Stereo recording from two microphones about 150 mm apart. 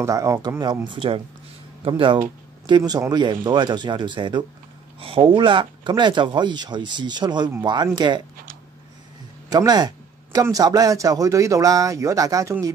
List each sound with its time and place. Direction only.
0.0 s speech: 20° right (ahead or behind)
9.5 s speech: 25° right (ahead or behind)